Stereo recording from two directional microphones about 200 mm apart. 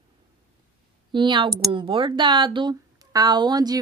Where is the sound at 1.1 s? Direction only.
25° right (ahead or behind).